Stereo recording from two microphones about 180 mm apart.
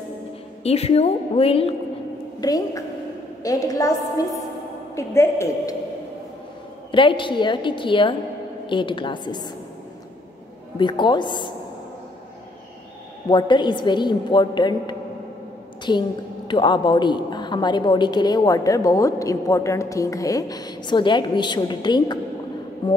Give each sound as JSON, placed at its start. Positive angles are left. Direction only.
{"t": 0.7, "sound": "a woman's voice", "side_deg": 35}
{"t": 2.4, "sound": "a woman's voice", "side_deg": 20}
{"t": 6.9, "sound": "a woman's voice", "side_deg": 25}
{"t": 10.8, "sound": "a woman's voice", "side_deg": 25}
{"t": 13.3, "sound": "a woman's voice", "side_deg": 25}